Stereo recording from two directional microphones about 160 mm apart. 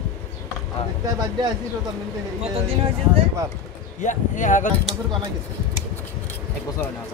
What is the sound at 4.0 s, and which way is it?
Speech, 50° left (ahead or behind).